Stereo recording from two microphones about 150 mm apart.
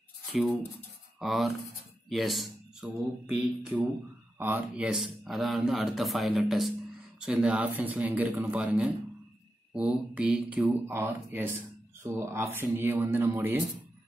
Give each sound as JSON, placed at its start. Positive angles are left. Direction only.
{"t": 0.3, "sound": "speech", "side_deg": -10}